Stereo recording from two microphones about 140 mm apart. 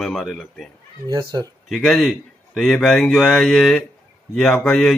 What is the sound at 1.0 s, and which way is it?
Speech, 30° right (ahead or behind).